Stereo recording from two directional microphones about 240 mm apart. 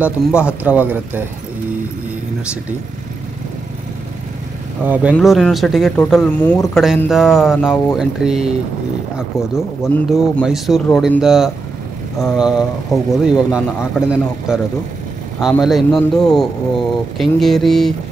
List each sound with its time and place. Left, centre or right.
0.0 s speech: centre
4.8 s speech: centre
9.9 s speech: centre